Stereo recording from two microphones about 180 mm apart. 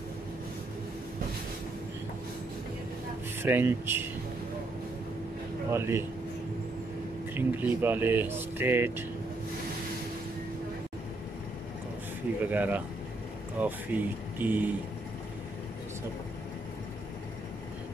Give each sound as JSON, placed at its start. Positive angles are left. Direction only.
{"t": 3.4, "sound": "speech", "side_deg": -10}
{"t": 5.7, "sound": "speech", "side_deg": -15}
{"t": 7.3, "sound": "speech", "side_deg": -10}
{"t": 12.4, "sound": "speech", "side_deg": -10}